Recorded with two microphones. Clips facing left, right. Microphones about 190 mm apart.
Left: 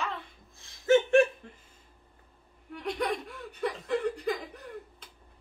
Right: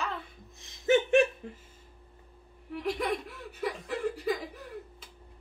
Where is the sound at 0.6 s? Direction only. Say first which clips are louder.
Left 2 dB; 20° right (ahead or behind).